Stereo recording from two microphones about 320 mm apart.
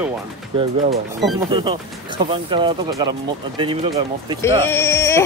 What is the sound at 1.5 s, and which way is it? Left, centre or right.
Speech, centre.